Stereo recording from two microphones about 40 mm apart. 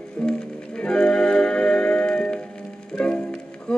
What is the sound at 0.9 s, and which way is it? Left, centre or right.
Music, centre.